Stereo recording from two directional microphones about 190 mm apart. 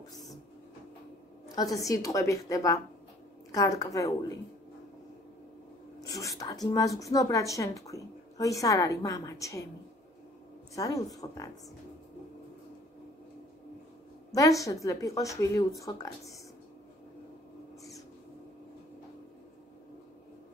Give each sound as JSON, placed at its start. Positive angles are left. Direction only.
{"t": 1.5, "sound": "a woman's voice", "side_deg": 20}
{"t": 6.2, "sound": "speech", "side_deg": 20}
{"t": 10.7, "sound": "speech", "side_deg": 20}
{"t": 14.3, "sound": "a woman's voice", "side_deg": 15}